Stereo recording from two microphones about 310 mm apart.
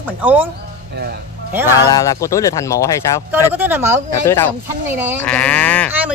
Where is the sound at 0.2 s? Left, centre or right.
Centre.